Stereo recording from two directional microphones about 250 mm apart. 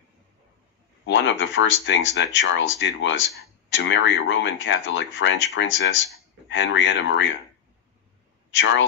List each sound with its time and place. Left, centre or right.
1.0 s speech: left
8.5 s speech: left